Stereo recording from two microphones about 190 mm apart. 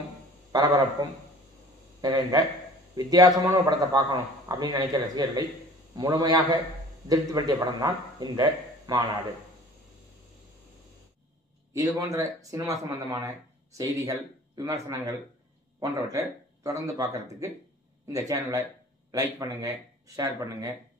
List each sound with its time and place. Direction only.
1.0 s a man's voice: 25° right (ahead or behind)
11.7 s speech: 20° right (ahead or behind)